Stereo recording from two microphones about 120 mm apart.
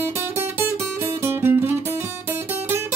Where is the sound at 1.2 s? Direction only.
20° right (ahead or behind).